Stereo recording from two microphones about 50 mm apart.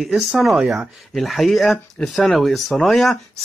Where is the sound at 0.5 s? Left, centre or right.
Centre.